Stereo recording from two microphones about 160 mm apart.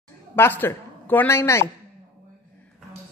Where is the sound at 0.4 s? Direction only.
15° left (ahead or behind).